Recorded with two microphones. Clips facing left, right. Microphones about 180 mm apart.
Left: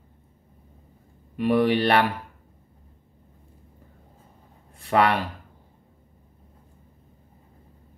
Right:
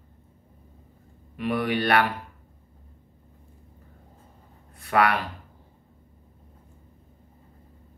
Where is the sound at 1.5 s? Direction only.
25° left (ahead or behind).